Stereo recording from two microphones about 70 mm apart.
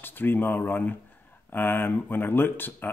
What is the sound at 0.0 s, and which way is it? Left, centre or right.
Speech, left.